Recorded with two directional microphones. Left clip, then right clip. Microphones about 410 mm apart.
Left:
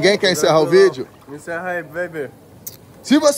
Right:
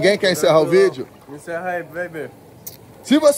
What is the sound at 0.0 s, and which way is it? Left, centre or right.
Speech, centre.